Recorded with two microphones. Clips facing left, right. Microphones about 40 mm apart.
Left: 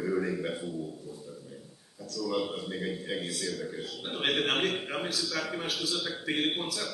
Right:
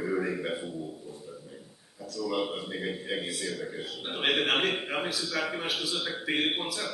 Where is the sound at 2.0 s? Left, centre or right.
Centre.